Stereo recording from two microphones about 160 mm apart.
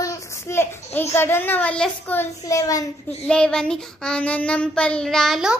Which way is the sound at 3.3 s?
5° left (ahead or behind).